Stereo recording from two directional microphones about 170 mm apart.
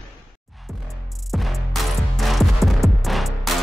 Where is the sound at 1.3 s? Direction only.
Centre (ahead or behind).